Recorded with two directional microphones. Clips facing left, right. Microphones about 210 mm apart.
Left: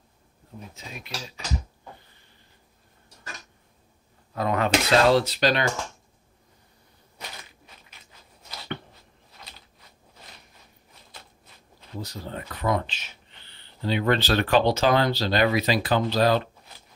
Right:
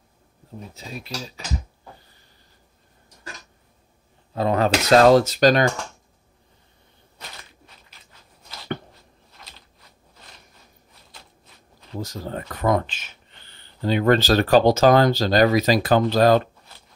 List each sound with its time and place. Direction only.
0.7 s speech: 35° right (ahead or behind)
4.3 s speech: 30° right (ahead or behind)
12.0 s speech: 45° right (ahead or behind)